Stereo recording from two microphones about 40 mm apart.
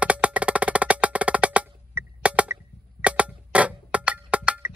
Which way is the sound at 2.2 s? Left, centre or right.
Right.